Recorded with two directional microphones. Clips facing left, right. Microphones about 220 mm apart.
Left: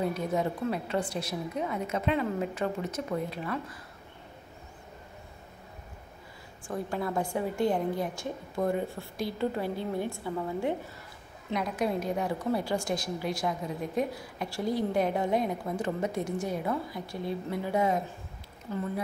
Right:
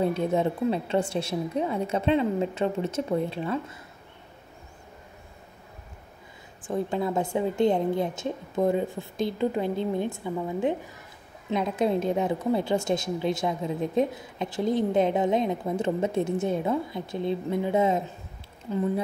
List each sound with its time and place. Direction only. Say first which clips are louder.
0.0 s a woman's voice: right 5 dB; 25° right (ahead or behind)
6.7 s a woman's voice: right 5 dB; 20° right (ahead or behind)